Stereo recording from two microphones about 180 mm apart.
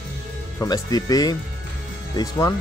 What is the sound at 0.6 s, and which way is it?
Speech, 20° left (ahead or behind).